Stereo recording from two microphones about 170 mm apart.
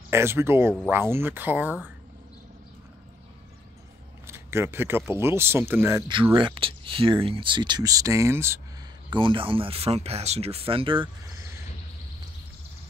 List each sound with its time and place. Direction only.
0.1 s speech: 15° right (ahead or behind)
4.3 s speech: 15° right (ahead or behind)
6.3 s speech: 30° right (ahead or behind); by 8.5 s 15° right (ahead or behind)
9.1 s speech: 30° right (ahead or behind)
11.3 s a sound: 15° right (ahead or behind)